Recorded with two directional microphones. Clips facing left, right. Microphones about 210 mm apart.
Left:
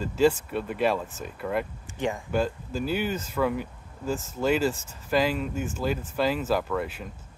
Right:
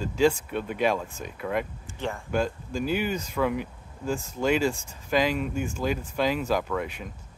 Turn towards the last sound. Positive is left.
turn(degrees=0)  # may be behind; listen again after turning